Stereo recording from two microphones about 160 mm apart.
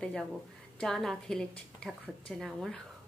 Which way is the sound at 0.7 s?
5° left (ahead or behind).